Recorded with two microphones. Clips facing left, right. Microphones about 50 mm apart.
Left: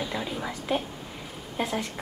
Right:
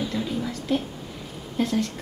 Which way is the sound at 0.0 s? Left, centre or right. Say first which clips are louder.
Right 3 dB; centre.